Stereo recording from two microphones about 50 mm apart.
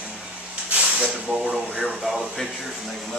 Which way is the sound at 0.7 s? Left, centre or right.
Right.